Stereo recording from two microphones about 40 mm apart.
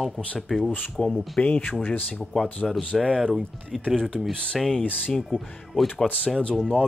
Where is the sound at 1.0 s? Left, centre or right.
Centre.